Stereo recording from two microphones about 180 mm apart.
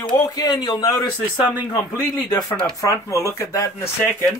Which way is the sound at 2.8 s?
15° left (ahead or behind).